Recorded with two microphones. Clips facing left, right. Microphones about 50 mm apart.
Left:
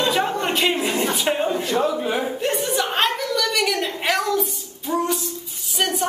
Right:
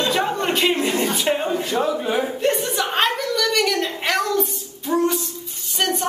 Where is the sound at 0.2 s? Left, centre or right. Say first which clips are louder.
Right 1 dB; centre.